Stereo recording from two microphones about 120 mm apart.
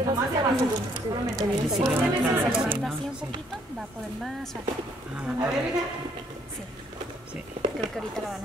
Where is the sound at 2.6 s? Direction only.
5° right (ahead or behind).